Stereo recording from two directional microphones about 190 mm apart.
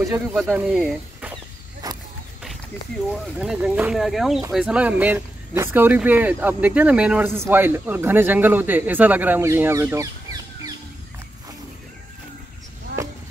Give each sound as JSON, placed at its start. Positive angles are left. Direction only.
{"t": 0.1, "sound": "speech", "side_deg": -10}
{"t": 1.8, "sound": "a sound", "side_deg": -20}
{"t": 3.1, "sound": "speech", "side_deg": -5}